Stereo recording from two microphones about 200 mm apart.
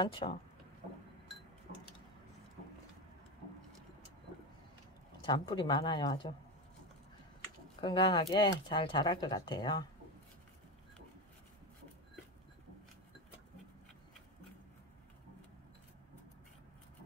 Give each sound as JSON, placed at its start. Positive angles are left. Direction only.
{"t": 0.0, "sound": "speech", "side_deg": 25}
{"t": 5.2, "sound": "speech", "side_deg": 25}
{"t": 7.8, "sound": "speech", "side_deg": 25}